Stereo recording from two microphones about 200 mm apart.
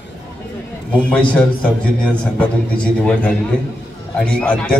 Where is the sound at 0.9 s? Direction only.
5° left (ahead or behind).